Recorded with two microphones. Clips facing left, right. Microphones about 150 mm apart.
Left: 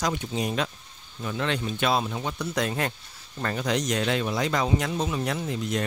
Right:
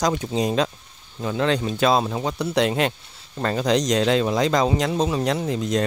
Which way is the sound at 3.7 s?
90° right.